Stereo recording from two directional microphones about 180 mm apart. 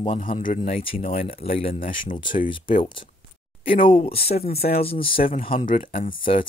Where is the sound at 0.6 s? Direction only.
30° left (ahead or behind).